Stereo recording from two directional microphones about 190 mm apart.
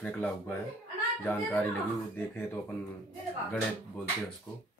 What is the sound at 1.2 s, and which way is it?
A child's voice, 10° left (ahead or behind).